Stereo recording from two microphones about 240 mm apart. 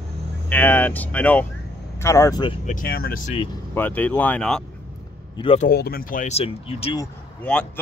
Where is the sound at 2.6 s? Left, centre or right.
Left.